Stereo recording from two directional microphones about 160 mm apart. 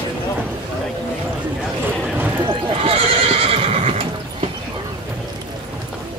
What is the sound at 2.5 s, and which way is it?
Neigh, 35° right (ahead or behind).